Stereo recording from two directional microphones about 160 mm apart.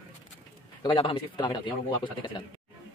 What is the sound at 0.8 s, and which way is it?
Speech, 30° left (ahead or behind).